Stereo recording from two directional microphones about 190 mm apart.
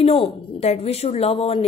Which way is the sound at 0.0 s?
30° left (ahead or behind).